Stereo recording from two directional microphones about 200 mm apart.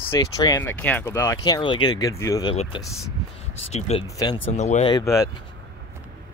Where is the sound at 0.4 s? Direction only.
15° left (ahead or behind).